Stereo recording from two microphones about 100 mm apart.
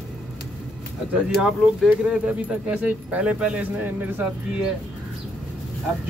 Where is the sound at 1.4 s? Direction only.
5° right (ahead or behind).